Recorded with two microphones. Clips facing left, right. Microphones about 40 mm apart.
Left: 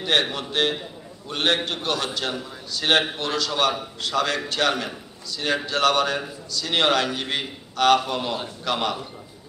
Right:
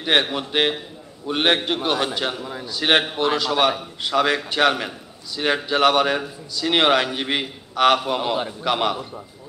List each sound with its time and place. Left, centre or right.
0.0 s a man's voice: centre